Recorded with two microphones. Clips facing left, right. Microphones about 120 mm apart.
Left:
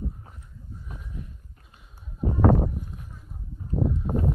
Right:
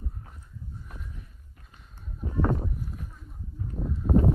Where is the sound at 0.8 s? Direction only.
5° left (ahead or behind).